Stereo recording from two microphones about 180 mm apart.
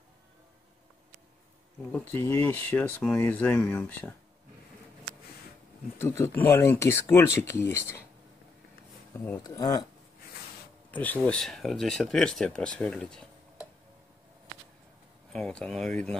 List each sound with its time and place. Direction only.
1.9 s speech: 10° left (ahead or behind)
5.9 s speech: 15° left (ahead or behind)
9.1 s speech: 10° left (ahead or behind)
9.4 s speech: 20° left (ahead or behind)
10.9 s speech: 10° left (ahead or behind)
15.3 s speech: 5° left (ahead or behind)